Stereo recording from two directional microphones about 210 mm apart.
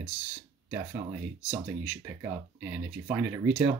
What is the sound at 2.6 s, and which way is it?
Speech, 5° right (ahead or behind).